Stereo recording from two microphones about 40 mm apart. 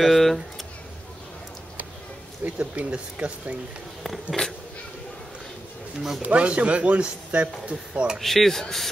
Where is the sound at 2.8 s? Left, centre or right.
Right.